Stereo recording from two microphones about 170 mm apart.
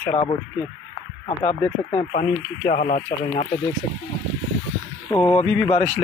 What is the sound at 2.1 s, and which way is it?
Speech, 50° left (ahead or behind).